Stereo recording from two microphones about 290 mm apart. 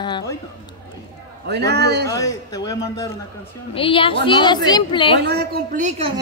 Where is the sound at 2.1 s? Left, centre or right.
Centre.